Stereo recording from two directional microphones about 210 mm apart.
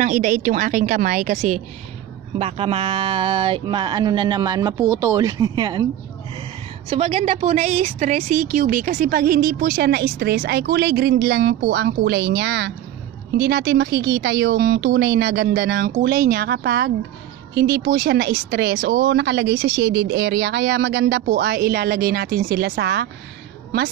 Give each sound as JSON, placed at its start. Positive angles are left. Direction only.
{"t": 0.0, "sound": "speech", "side_deg": -35}
{"t": 6.9, "sound": "a woman's voice", "side_deg": -30}